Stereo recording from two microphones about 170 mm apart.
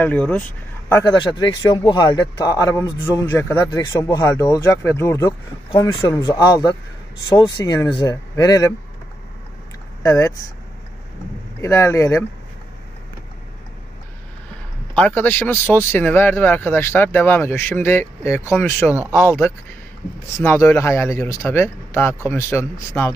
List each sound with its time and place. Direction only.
0.0 s speech: 10° left (ahead or behind)
1.1 s speech: 25° left (ahead or behind)
10.0 s speech: 15° left (ahead or behind)
11.6 s speech: 15° left (ahead or behind)
15.0 s speech: 10° left (ahead or behind)